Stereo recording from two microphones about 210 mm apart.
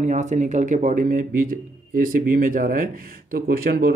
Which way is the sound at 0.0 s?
35° right (ahead or behind).